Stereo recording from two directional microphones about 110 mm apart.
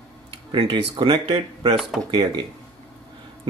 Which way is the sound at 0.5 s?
50° right (ahead or behind).